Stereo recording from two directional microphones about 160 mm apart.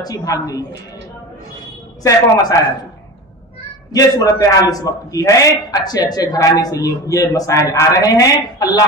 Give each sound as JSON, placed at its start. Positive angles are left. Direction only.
{"t": 0.0, "sound": "a man's voice", "side_deg": 20}
{"t": 2.0, "sound": "a man's voice", "side_deg": 20}
{"t": 3.9, "sound": "a man's voice", "side_deg": 20}